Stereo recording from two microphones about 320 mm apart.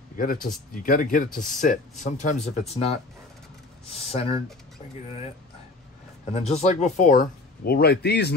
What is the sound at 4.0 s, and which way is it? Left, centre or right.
Speech, centre.